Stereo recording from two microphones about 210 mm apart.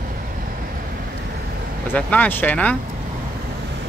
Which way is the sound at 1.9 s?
5° left (ahead or behind).